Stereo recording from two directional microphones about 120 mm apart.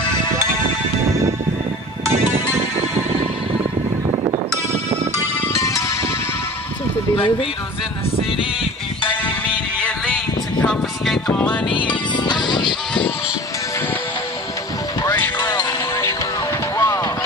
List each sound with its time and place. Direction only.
2.1 s music: 75° right (ahead or behind)
5.4 s music: 25° left (ahead or behind)
7.2 s speech: 45° left (ahead or behind)
9.0 s music: 10° left (ahead or behind)
10.6 s a sound: 5° left (ahead or behind)
12.2 s music: 35° left (ahead or behind)
15.0 s music: 15° left (ahead or behind)
16.7 s vehicle: 25° left (ahead or behind)